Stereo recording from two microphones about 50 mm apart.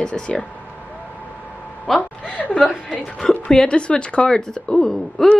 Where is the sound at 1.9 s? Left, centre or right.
Centre.